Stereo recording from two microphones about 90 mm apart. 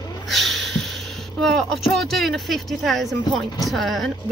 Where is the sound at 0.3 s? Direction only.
Centre (ahead or behind).